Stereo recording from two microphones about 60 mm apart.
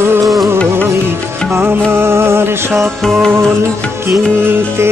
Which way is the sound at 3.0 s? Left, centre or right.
Centre.